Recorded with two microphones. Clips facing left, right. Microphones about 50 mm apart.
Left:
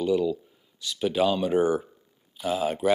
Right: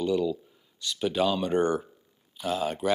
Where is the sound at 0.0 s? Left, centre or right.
Centre.